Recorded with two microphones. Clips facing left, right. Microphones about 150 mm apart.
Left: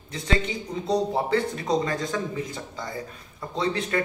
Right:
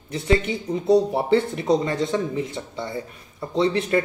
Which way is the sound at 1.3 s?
25° right (ahead or behind).